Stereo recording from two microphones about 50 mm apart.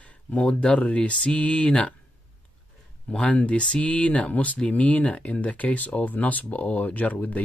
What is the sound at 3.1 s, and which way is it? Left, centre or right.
Speech, left.